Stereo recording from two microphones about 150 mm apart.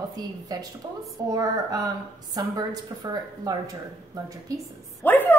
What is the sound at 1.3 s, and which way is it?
A woman's voice, 25° right (ahead or behind).